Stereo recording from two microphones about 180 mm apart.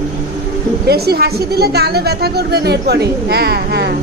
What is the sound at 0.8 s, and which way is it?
A woman's voice, 60° right (ahead or behind).